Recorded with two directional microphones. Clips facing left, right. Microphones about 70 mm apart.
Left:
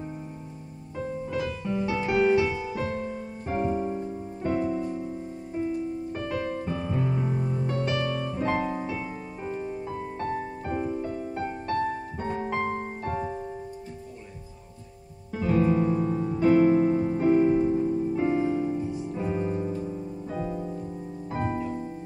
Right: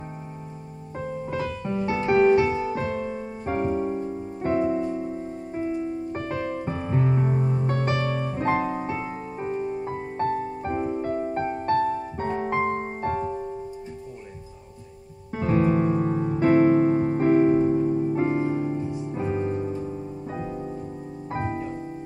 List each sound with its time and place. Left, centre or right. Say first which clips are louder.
0.9 s music: right 1 dB; right
6.1 s music: right 1 dB; right
9.5 s music: right 4 dB; centre
9.8 s music: right 5 dB; right
15.3 s music: right 1 dB; right
18.3 s music: right 1 dB; right